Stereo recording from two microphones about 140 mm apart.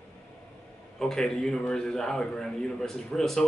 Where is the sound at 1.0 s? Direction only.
5° left (ahead or behind).